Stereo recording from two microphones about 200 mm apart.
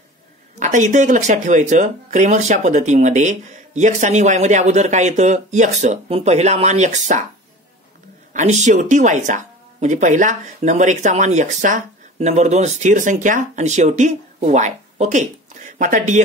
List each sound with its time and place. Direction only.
0.6 s speech: 35° right (ahead or behind)
8.3 s speech: 35° right (ahead or behind)